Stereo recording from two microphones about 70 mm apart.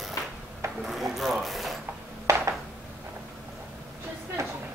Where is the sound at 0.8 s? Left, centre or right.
Centre.